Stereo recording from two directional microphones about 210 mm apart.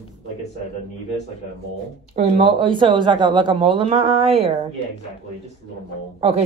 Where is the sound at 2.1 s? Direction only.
25° right (ahead or behind).